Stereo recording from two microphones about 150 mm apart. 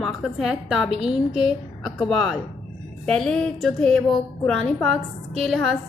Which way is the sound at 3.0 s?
5° left (ahead or behind).